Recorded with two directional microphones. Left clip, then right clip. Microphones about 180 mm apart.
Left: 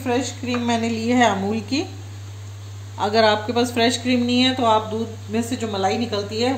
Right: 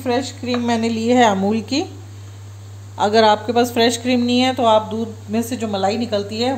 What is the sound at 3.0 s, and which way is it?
A woman's voice, 65° right (ahead or behind).